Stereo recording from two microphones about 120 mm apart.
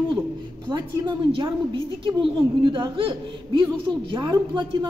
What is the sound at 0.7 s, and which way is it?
A woman's voice, 40° right (ahead or behind).